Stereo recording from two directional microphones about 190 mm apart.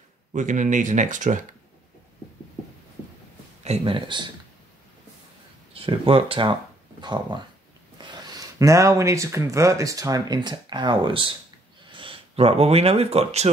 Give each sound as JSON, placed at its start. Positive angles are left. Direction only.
{"t": 0.3, "sound": "speech", "side_deg": -40}
{"t": 3.6, "sound": "speech", "side_deg": -30}
{"t": 5.7, "sound": "speech", "side_deg": -30}